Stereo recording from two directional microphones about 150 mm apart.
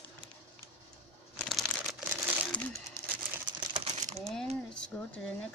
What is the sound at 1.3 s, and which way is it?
Crumpling, 5° left (ahead or behind).